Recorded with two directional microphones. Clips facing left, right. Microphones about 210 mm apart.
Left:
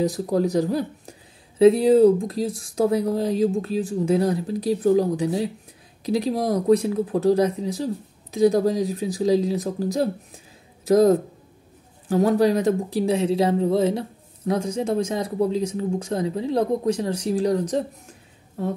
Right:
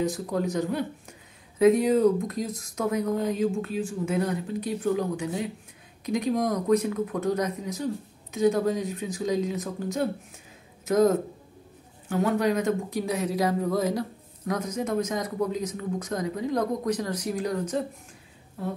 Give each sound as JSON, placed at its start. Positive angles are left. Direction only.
{"t": 0.0, "sound": "speech", "side_deg": 35}